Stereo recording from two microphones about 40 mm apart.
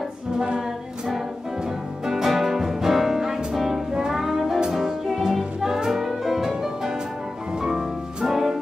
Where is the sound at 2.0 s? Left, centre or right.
Centre.